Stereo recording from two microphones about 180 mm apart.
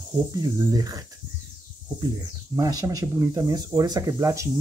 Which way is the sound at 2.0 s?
20° right (ahead or behind).